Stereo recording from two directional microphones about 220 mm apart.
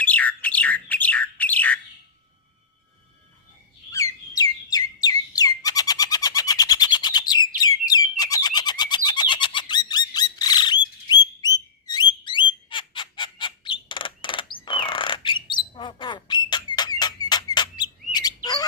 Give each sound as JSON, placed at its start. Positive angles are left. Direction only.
{"t": 0.0, "sound": "bird", "side_deg": 5}
{"t": 3.9, "sound": "chirp", "side_deg": 15}
{"t": 5.0, "sound": "bird", "side_deg": 15}